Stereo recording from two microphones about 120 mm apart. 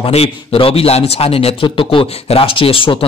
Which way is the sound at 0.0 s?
55° left (ahead or behind).